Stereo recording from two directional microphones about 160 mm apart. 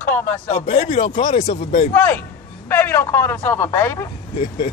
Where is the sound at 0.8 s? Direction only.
30° left (ahead or behind).